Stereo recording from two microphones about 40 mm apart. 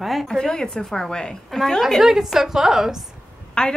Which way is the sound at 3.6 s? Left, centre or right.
Left.